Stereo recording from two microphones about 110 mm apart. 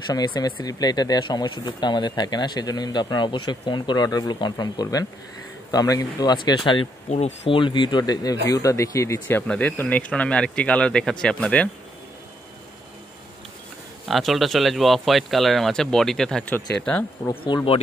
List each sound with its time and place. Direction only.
0.1 s speech: 35° left (ahead or behind)
7.1 s speech: 85° left
7.5 s speech: 45° left (ahead or behind); by 9.4 s 30° left (ahead or behind)
9.5 s speech: 15° left (ahead or behind)
14.0 s speech: centre (ahead or behind)
17.5 s speech: 45° left (ahead or behind)